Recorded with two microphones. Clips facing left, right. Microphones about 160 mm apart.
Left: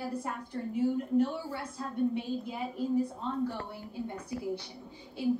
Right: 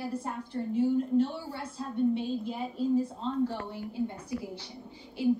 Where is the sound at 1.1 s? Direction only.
25° right (ahead or behind).